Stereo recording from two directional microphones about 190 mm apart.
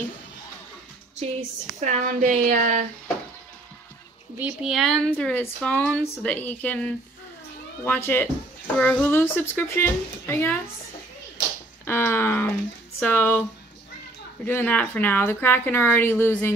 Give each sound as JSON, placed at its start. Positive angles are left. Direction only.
{"t": 1.8, "sound": "speech", "side_deg": -40}
{"t": 4.4, "sound": "a woman's voice", "side_deg": -5}
{"t": 11.8, "sound": "speech", "side_deg": 10}